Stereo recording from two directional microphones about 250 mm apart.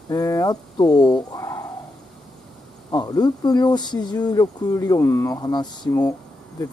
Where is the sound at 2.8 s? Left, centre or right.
Centre.